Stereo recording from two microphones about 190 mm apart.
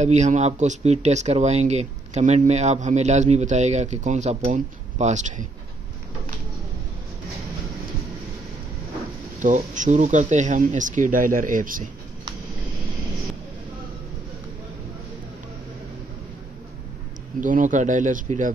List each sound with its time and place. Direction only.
0.0 s speech: 40° right (ahead or behind)
9.4 s speech: 40° right (ahead or behind)
17.4 s speech: 45° right (ahead or behind)